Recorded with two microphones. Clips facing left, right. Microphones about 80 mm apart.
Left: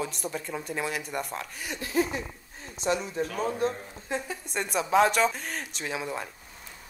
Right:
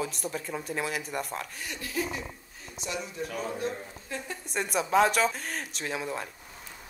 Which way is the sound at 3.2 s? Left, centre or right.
Left.